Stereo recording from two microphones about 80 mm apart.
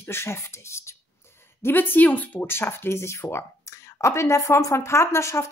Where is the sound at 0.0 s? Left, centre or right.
Left.